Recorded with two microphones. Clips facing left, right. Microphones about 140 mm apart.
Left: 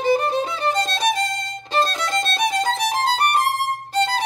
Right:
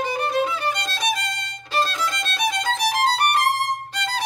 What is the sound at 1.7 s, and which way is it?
Violin, 30° left (ahead or behind).